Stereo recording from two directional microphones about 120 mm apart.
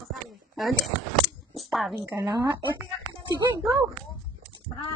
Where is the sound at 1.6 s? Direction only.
Centre (ahead or behind).